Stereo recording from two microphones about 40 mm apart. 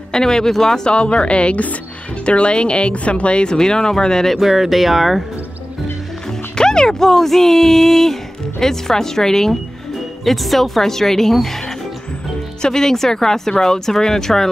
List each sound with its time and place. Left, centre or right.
0.1 s speech: centre
0.9 s speech: left
4.4 s speech: centre
6.5 s speech: centre
10.2 s speech: centre
12.6 s speech: centre